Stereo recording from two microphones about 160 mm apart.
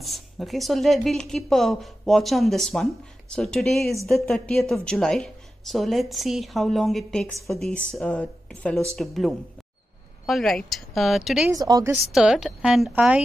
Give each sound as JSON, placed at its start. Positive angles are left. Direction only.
{"t": 0.0, "sound": "a woman's voice", "side_deg": 0}
{"t": 11.5, "sound": "speech", "side_deg": -25}
{"t": 12.1, "sound": "a woman's voice", "side_deg": -5}